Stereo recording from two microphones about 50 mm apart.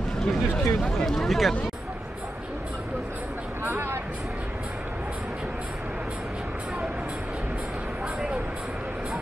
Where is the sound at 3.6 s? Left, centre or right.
Right.